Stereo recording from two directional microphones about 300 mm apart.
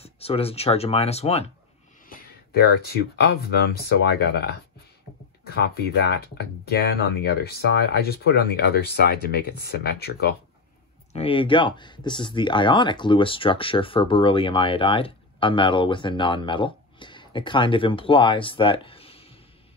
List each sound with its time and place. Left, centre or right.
0.0 s speech: centre
2.0 s a sound: left
3.3 s speech: left
5.5 s speech: left
11.1 s speech: centre